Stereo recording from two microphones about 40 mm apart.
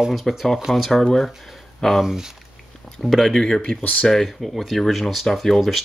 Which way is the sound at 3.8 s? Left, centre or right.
Left.